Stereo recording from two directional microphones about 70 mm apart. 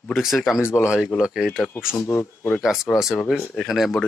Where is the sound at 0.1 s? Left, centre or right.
Centre.